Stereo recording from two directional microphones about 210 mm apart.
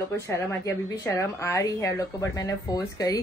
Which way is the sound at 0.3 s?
15° left (ahead or behind).